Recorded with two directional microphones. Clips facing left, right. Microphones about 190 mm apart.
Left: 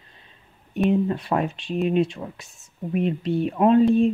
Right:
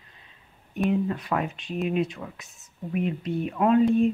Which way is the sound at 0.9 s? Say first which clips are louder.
Left 4 dB; 30° left (ahead or behind).